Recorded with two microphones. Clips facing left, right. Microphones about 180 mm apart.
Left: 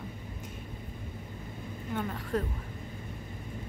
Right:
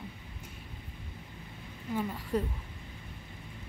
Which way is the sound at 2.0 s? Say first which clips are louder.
Even; 5° right (ahead or behind).